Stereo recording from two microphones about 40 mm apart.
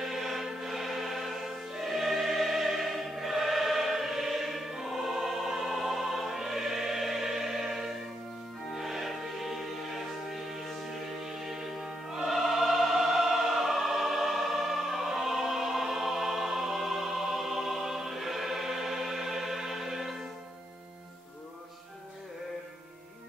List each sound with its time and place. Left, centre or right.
0.0 s music: centre